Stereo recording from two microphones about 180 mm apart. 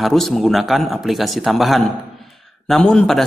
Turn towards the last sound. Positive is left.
turn(degrees=5)  # may be behind; listen again after turning